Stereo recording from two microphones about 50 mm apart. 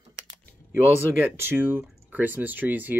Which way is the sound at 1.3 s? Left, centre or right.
Right.